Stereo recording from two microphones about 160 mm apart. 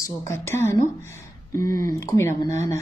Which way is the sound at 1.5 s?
60° right (ahead or behind).